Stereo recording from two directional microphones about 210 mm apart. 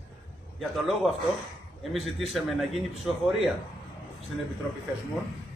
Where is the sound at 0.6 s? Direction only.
Centre (ahead or behind).